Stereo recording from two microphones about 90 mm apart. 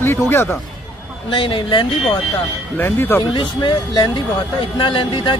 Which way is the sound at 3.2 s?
65° left (ahead or behind).